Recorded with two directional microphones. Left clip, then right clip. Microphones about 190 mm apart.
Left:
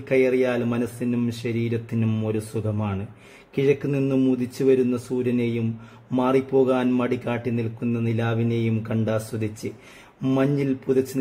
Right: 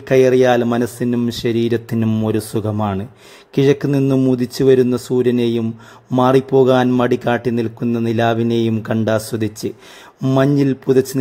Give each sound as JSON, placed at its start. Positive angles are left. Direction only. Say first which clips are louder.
{"t": 0.1, "sound": "speech", "louder": "right 9 dB", "side_deg": -35}